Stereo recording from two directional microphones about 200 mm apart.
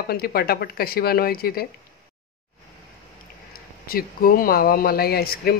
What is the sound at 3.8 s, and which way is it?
Speech, 45° left (ahead or behind).